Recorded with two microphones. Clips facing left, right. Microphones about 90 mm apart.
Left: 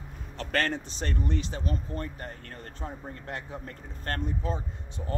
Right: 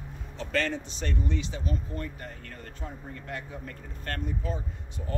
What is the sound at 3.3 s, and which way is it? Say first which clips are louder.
Speech: even; 35° left (ahead or behind).